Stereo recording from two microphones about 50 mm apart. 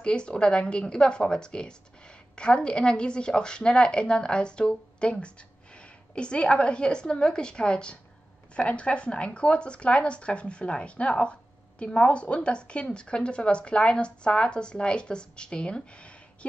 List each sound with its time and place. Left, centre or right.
0.0 s speech: centre